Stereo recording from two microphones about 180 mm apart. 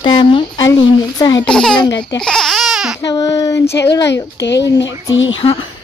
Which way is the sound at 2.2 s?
Centre (ahead or behind).